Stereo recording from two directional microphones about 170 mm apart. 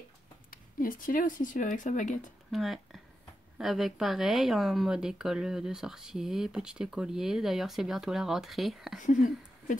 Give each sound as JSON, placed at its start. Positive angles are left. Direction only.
{"t": 0.5, "sound": "speech", "side_deg": 55}
{"t": 2.5, "sound": "speech", "side_deg": 0}
{"t": 9.0, "sound": "speech", "side_deg": 50}